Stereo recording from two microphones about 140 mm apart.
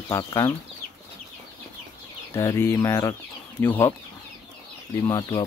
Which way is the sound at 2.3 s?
20° left (ahead or behind).